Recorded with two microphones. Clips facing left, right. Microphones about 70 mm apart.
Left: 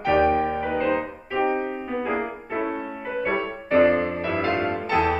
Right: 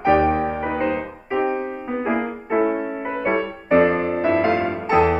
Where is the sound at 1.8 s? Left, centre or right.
Right.